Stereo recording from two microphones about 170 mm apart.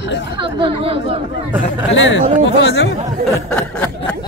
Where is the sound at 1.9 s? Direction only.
90° left.